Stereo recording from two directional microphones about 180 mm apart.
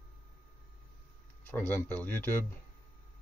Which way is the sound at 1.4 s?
10° left (ahead or behind).